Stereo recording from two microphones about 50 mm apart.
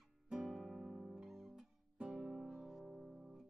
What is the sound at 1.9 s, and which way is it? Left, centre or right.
Guitar, centre.